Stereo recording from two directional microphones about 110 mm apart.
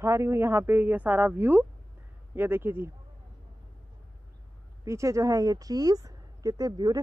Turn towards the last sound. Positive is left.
turn(degrees=-35)  # may be behind; listen again after turning